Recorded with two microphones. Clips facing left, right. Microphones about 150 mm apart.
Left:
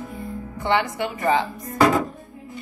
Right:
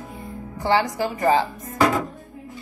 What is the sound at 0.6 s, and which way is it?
Speech, 35° right (ahead or behind).